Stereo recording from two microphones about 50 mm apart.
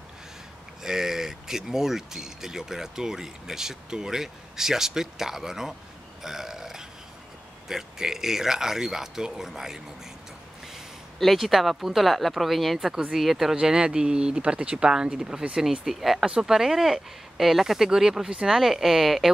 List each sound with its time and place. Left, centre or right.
0.8 s speech: centre
6.2 s burping: centre
7.6 s speech: centre
11.1 s speech: centre
13.6 s speech: centre